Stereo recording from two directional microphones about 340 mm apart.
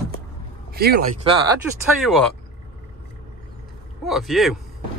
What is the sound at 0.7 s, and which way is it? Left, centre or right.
Speech, right.